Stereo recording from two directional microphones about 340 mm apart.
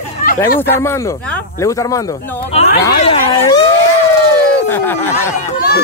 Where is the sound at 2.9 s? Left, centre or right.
Centre.